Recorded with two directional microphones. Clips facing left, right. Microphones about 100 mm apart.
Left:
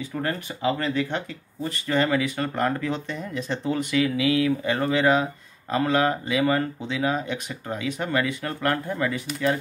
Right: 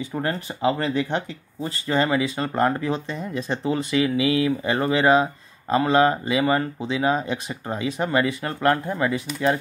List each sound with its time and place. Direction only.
0.1 s speech: 30° right (ahead or behind)